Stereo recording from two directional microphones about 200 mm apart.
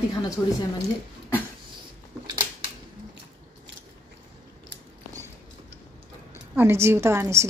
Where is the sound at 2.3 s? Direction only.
25° right (ahead or behind).